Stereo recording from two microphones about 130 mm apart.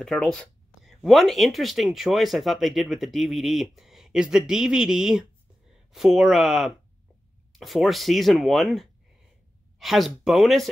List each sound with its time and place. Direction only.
0.0 s speech: 5° left (ahead or behind)